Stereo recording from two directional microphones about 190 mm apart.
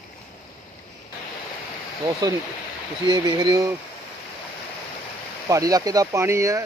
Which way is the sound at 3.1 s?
25° right (ahead or behind).